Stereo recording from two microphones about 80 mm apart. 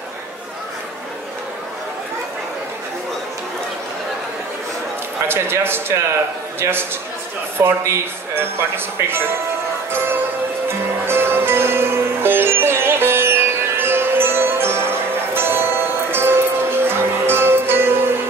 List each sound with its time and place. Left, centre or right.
5.3 s speech: right
10.7 s music: right